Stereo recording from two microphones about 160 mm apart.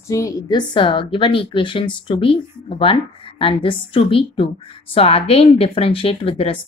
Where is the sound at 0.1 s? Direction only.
25° left (ahead or behind).